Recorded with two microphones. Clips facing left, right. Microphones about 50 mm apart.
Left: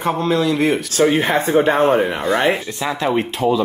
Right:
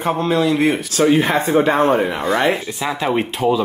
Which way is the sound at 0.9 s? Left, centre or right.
Left.